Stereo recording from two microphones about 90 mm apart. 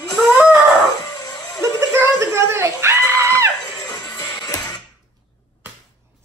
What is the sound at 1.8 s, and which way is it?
Screaming, 30° right (ahead or behind).